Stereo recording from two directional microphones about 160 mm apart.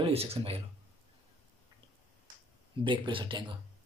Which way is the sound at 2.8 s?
30° right (ahead or behind).